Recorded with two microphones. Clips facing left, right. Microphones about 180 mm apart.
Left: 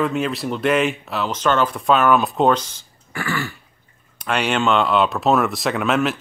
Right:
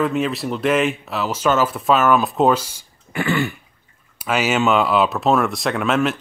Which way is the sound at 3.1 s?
20° right (ahead or behind).